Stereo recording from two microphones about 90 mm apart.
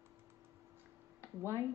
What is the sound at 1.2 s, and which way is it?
Speech, 25° right (ahead or behind).